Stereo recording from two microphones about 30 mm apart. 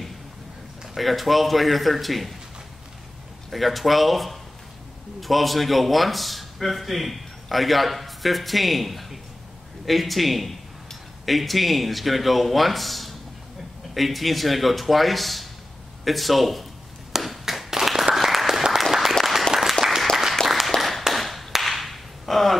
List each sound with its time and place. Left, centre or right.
0.9 s a man's voice: centre
3.4 s a man's voice: centre
17.2 s tap: centre
17.6 s applause: centre
18.5 s applause: centre
20.4 s a sound: centre
20.7 s a sound: centre
21.1 s clapping: centre
21.5 s whip: centre